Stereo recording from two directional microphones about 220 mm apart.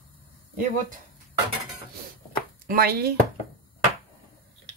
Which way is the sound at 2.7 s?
45° right (ahead or behind).